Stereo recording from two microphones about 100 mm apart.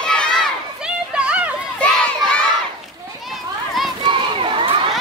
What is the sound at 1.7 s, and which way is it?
Crowd, 10° left (ahead or behind).